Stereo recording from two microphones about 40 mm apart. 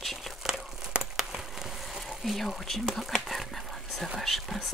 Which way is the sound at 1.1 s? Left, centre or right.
Centre.